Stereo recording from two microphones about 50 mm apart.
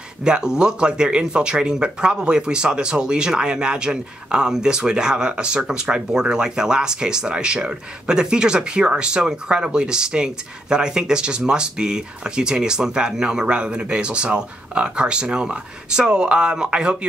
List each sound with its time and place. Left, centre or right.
0.2 s speech: centre